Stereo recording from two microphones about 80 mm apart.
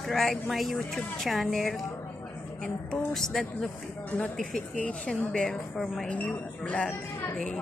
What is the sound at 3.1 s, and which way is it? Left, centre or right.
A woman's voice, centre.